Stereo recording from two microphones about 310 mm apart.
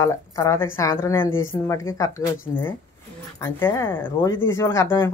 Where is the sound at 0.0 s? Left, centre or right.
Centre.